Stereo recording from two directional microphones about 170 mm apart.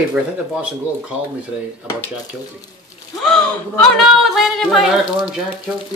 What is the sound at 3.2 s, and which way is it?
Speech, centre (ahead or behind).